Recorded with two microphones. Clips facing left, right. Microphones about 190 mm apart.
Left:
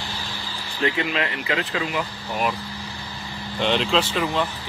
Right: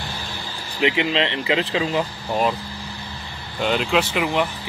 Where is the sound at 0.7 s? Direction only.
20° right (ahead or behind).